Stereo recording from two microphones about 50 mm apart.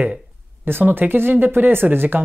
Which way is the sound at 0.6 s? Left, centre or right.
Right.